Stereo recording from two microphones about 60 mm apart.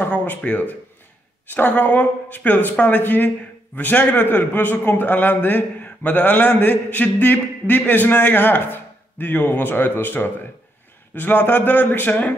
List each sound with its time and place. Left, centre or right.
0.1 s a woman's voice: left